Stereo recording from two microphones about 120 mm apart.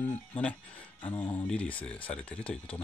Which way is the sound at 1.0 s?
15° left (ahead or behind).